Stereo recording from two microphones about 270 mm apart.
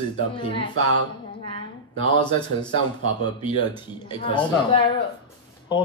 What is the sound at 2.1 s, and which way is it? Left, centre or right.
Speech, centre.